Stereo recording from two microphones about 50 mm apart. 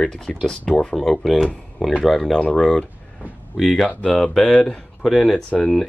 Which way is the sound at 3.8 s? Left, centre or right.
Left.